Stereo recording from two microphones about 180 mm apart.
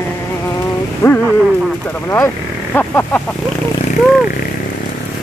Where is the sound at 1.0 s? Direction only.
15° left (ahead or behind).